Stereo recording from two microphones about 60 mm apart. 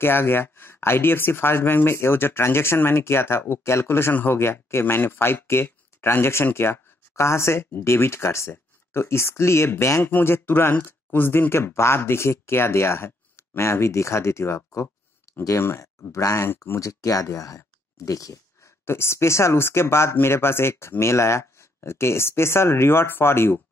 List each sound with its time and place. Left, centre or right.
0.0 s speech: left
10.1 s speech: left
16.8 s speech: left
18.9 s speech: left